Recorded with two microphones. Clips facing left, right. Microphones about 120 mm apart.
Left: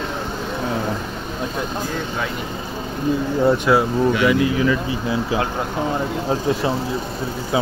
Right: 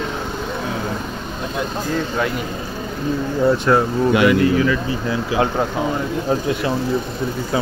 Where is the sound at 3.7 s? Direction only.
5° left (ahead or behind).